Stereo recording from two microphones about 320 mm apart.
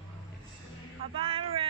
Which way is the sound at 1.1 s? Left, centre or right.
Centre.